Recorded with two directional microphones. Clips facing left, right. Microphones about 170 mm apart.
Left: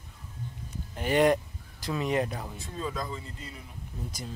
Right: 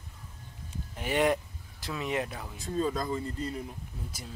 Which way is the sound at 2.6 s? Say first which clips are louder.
Right 7 dB; 40° right (ahead or behind).